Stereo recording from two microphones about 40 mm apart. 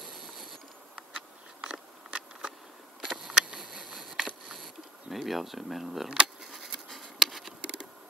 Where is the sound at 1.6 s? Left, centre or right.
Right.